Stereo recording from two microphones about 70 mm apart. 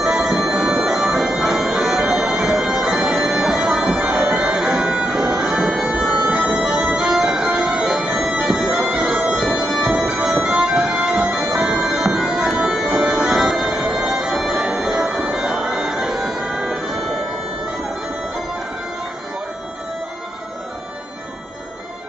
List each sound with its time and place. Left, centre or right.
0.0 s music: centre